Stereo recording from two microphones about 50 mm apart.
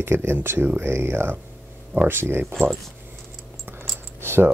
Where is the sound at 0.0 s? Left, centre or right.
Right.